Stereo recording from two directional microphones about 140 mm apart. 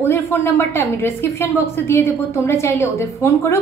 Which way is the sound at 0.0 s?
15° left (ahead or behind).